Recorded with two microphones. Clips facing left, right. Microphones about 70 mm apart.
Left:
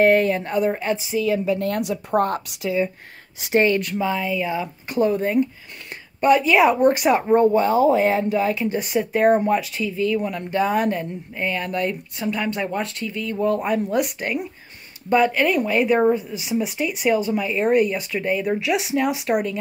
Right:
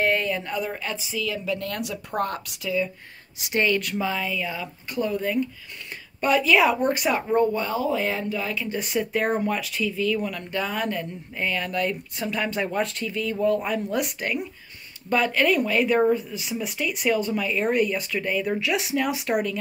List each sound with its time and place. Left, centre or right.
0.0 s a woman's voice: left
3.8 s speech: centre
4.6 s speech: left
6.2 s speech: centre
7.1 s speech: left
7.6 s a woman's voice: left
8.6 s speech: centre
13.4 s speech: centre